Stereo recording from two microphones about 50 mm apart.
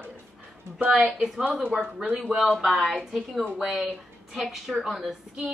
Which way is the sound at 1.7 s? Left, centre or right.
Left.